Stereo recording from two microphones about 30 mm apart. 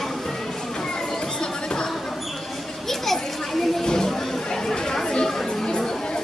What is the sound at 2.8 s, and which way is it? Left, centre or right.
Children playing, centre.